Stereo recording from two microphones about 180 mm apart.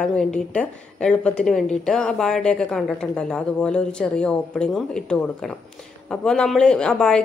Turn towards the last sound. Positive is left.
turn(degrees=5)  # may be behind; listen again after turning